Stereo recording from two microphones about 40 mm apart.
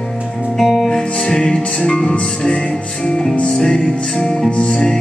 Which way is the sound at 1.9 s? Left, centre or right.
Left.